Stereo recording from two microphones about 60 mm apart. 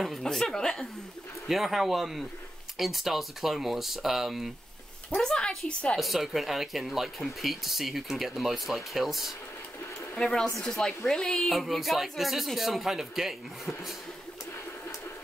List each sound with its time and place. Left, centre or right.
0.2 s speech: centre
1.5 s speech: centre
5.1 s speech: centre
5.7 s a woman's voice: centre
5.9 s speech: centre
10.1 s speech: centre